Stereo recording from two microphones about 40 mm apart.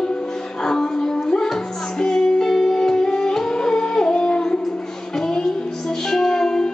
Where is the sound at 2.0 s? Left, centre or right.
Centre.